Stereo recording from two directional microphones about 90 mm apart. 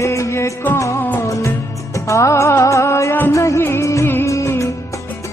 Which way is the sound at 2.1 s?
35° left (ahead or behind).